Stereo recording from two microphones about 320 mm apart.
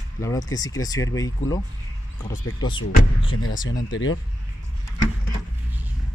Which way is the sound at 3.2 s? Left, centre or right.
Left.